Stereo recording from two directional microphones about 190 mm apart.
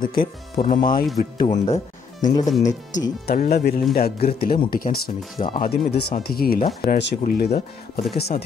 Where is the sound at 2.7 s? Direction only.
40° left (ahead or behind).